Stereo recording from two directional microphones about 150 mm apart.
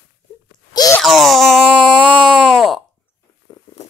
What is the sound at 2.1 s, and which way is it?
Wail, centre (ahead or behind).